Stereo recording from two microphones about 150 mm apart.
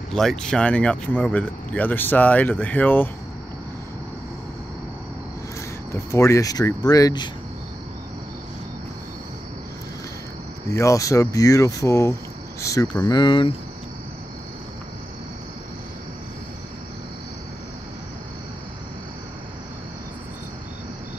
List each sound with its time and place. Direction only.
0.1 s speech: 5° left (ahead or behind)
5.9 s speech: 20° left (ahead or behind)
10.7 s speech: 20° left (ahead or behind)